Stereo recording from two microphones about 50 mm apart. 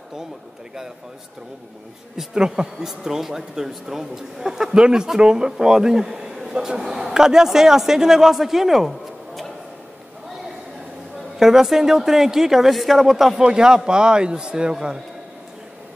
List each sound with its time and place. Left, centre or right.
2.3 s speech: centre
11.3 s speech: centre